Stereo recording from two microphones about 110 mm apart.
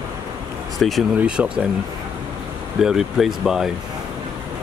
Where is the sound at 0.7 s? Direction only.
Centre (ahead or behind).